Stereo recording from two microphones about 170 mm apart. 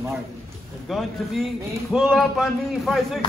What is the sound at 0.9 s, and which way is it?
Speech, centre (ahead or behind).